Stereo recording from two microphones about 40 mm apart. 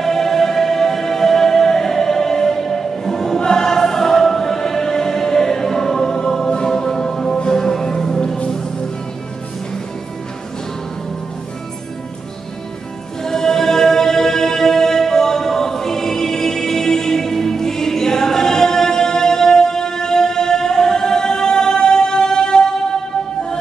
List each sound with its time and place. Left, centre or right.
0.0 s music: centre
13.2 s music: centre